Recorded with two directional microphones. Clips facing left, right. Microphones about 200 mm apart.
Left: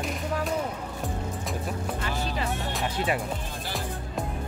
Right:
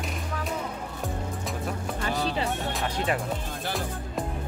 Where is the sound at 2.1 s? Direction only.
35° right (ahead or behind).